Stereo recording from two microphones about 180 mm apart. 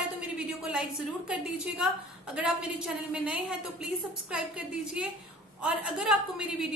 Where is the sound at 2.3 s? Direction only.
5° right (ahead or behind).